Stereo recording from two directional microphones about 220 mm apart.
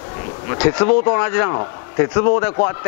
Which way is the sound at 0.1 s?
20° left (ahead or behind).